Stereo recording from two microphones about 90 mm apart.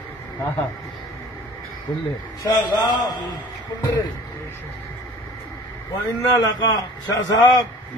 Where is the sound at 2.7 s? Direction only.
55° left (ahead or behind).